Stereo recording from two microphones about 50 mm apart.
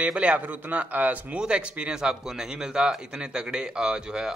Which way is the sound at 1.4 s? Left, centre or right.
Right.